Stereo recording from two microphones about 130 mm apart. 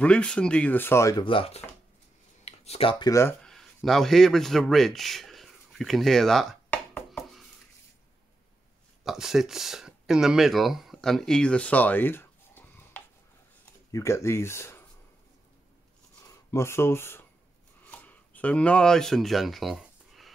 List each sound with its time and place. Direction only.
0.0 s speech: 10° left (ahead or behind)
1.2 s speech: 45° left (ahead or behind)
2.4 s a sound: 55° left (ahead or behind)
3.1 s speech: 20° left (ahead or behind)
3.4 s a man's voice: centre (ahead or behind)
7.1 s dishes: centre (ahead or behind)
9.0 s speech: 5° right (ahead or behind); by 14.9 s 20° left (ahead or behind)
16.3 s speech: 20° left (ahead or behind)
17.8 s a sound: 10° left (ahead or behind)